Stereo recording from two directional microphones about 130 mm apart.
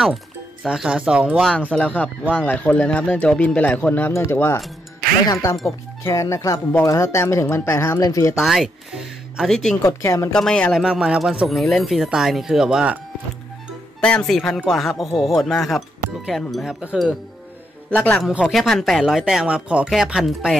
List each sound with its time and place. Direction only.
0.7 s speech: 5° right (ahead or behind)
1.7 s speech: 10° left (ahead or behind)
8.4 s speech: 5° right (ahead or behind)
9.8 s speech: 25° left (ahead or behind)
10.3 s speech: 5° left (ahead or behind)
10.8 s speech: 5° right (ahead or behind)
14.0 s speech: 5° left (ahead or behind)
17.8 s a woman's voice: 10° left (ahead or behind)
18.4 s speech: centre (ahead or behind)